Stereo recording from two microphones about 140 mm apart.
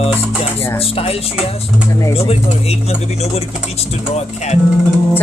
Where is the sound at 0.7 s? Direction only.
45° left (ahead or behind).